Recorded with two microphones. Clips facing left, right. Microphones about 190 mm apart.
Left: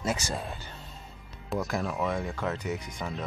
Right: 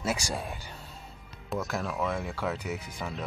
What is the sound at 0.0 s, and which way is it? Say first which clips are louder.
Speech: even; 10° right (ahead or behind).